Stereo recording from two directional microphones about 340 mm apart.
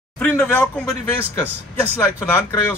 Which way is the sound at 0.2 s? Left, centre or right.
Centre.